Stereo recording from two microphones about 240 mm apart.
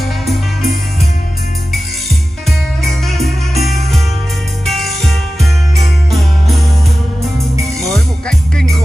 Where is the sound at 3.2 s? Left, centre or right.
Centre.